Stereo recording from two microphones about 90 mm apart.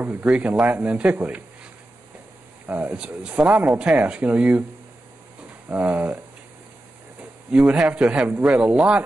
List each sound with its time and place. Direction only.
0.2 s speech: 10° right (ahead or behind)
1.2 s a sound: 15° right (ahead or behind)
2.6 s speech: 20° right (ahead or behind)
5.7 s speech: 15° right (ahead or behind)
7.5 s speech: 10° right (ahead or behind)